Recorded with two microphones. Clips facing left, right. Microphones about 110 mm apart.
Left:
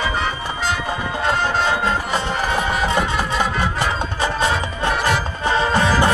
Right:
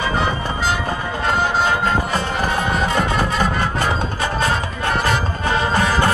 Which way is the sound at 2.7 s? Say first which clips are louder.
Right 1 dB; 5° left (ahead or behind).